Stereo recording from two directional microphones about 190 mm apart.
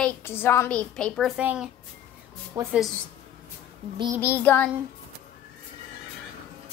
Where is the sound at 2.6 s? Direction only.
20° right (ahead or behind).